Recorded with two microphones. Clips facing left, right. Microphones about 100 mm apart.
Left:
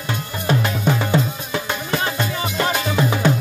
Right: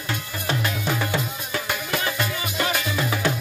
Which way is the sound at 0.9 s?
20° left (ahead or behind).